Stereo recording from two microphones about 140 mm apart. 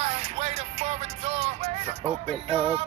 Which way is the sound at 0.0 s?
50° right (ahead or behind).